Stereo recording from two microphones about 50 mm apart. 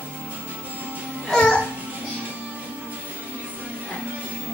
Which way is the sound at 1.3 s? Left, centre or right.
Centre.